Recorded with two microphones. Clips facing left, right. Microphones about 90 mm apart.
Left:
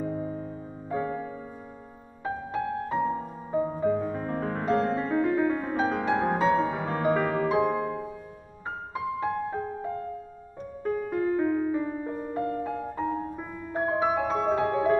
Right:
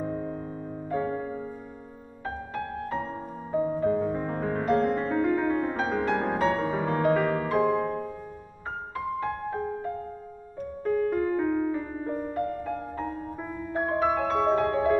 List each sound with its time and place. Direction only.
0.0 s music: 55° right (ahead or behind)
2.2 s music: 10° left (ahead or behind)
3.9 s music: 5° right (ahead or behind)
7.4 s music: 15° left (ahead or behind)
7.8 s music: 60° right (ahead or behind)
8.9 s music: 10° left (ahead or behind)
10.8 s music: 10° left (ahead or behind)